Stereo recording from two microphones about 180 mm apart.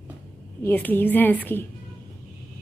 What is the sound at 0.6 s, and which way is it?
A woman's voice, 10° left (ahead or behind).